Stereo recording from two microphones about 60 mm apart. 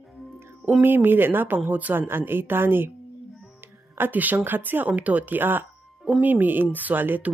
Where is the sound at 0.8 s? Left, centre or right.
Right.